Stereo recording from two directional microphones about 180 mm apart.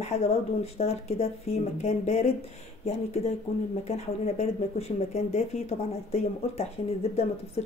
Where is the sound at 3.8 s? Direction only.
35° left (ahead or behind).